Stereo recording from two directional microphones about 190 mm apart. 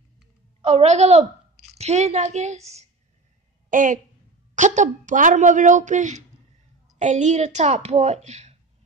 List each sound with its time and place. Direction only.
0.6 s a woman's voice: 35° right (ahead or behind)